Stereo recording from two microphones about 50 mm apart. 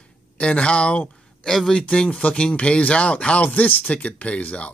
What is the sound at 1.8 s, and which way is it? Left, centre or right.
Speech, left.